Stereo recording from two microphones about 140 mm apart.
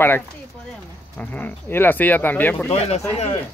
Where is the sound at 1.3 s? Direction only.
15° left (ahead or behind).